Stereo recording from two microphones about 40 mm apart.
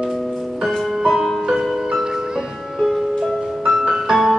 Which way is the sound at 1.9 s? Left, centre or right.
Centre.